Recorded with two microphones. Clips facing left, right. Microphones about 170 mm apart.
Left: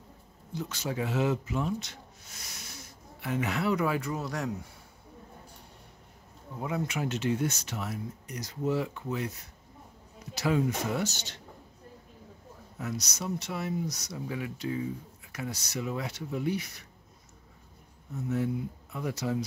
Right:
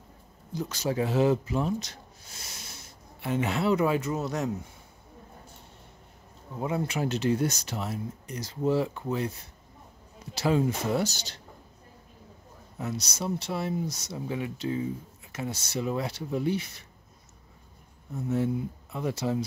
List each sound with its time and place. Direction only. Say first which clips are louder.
0.5 s speech: right 4 dB; 40° right (ahead or behind); by 4.5 s 20° right (ahead or behind)
6.6 s speech: right 3 dB; 30° right (ahead or behind)
12.7 s speech: right 2 dB; 30° right (ahead or behind)
18.3 s speech: right 3 dB; 25° right (ahead or behind)